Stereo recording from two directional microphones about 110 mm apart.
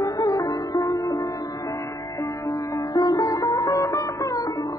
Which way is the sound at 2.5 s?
35° left (ahead or behind).